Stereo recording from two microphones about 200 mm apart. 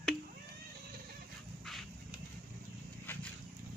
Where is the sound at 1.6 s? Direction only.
Centre (ahead or behind).